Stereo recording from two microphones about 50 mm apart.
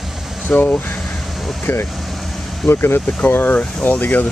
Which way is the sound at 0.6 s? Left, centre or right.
Left.